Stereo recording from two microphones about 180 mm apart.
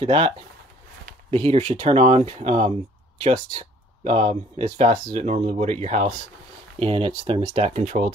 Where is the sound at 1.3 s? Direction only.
35° right (ahead or behind).